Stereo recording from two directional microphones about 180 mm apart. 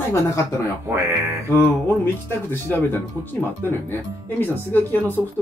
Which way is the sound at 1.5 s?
10° left (ahead or behind).